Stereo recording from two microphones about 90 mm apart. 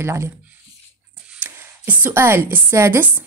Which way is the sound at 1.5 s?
25° right (ahead or behind).